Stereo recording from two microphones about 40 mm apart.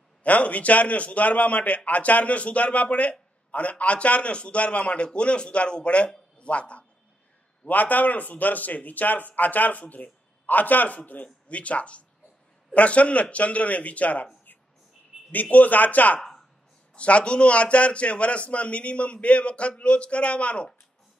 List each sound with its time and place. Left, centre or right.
0.2 s a man's voice: left
7.6 s a man's voice: left
15.5 s a man's voice: left
16.9 s a man's voice: left